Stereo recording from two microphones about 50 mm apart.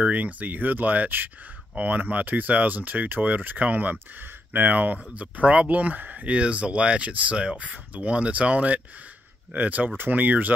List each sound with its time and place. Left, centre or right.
0.1 s speech: right